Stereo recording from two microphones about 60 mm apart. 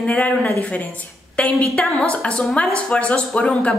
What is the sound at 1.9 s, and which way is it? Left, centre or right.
A woman's voice, centre.